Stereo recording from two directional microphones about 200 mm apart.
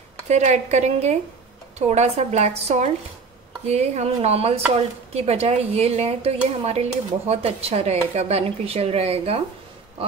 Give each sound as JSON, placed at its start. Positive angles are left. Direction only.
{"t": 0.3, "sound": "speech", "side_deg": -35}